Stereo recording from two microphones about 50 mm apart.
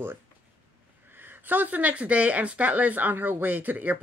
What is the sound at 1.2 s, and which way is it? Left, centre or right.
Speech, right.